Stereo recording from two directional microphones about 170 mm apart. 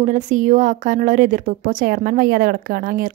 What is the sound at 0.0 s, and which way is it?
Speech, 50° right (ahead or behind).